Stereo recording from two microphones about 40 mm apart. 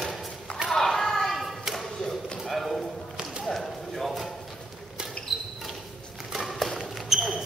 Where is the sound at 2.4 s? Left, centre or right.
Centre.